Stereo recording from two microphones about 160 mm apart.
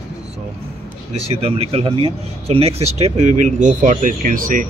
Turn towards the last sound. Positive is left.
turn(degrees=-55)  # may be behind; listen again after turning